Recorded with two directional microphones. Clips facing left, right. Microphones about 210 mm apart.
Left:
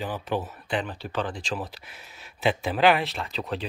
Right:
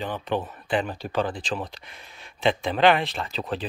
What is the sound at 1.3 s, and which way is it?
Speech, centre (ahead or behind).